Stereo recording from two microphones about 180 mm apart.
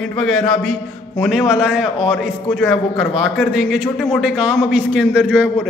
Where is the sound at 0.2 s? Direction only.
5° left (ahead or behind).